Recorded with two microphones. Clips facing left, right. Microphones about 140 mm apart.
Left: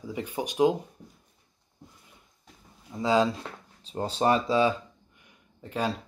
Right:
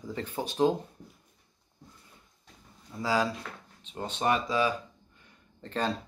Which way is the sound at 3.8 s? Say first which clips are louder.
Left 4 dB; 35° left (ahead or behind).